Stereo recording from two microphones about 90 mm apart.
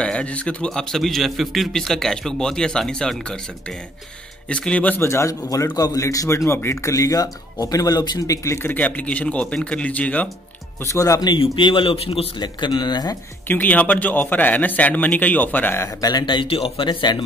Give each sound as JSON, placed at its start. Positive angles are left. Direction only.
{"t": 0.0, "sound": "a man's voice", "side_deg": 10}
{"t": 4.5, "sound": "a man's voice", "side_deg": 15}
{"t": 8.6, "sound": "a man's voice", "side_deg": 20}
{"t": 10.8, "sound": "a man's voice", "side_deg": 35}
{"t": 11.3, "sound": "a man's voice", "side_deg": 75}
{"t": 12.4, "sound": "speech", "side_deg": 60}
{"t": 13.5, "sound": "speech", "side_deg": 20}
{"t": 16.0, "sound": "speech", "side_deg": 50}